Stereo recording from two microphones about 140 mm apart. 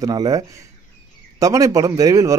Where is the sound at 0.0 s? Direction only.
25° right (ahead or behind).